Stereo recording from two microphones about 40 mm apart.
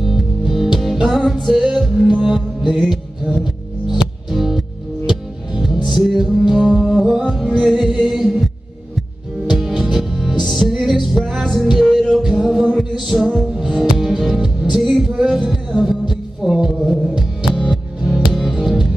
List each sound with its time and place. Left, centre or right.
0.0 s music: centre
2.0 s music: right
2.2 s music: centre
3.9 s music: centre
9.5 s music: centre
14.8 s music: centre